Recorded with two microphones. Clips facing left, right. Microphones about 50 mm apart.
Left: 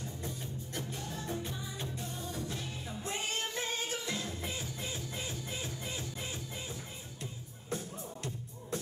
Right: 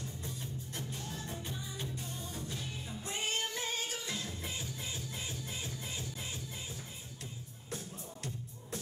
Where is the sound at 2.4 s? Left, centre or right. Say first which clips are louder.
Left 2 dB; left.